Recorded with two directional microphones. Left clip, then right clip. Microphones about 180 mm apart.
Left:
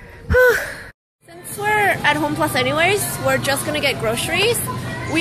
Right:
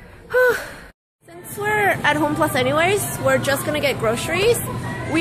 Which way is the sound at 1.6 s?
20° right (ahead or behind).